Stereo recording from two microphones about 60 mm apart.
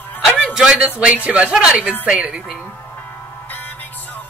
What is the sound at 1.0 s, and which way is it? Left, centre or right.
A woman's voice, right.